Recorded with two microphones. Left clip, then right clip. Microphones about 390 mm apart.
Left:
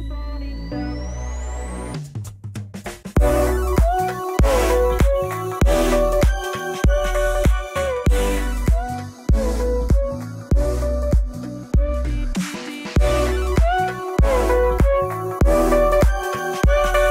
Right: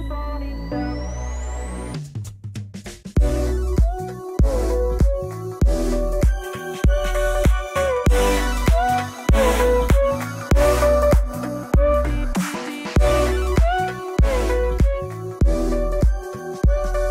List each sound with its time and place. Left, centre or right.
0.7 s music: centre
3.2 s music: centre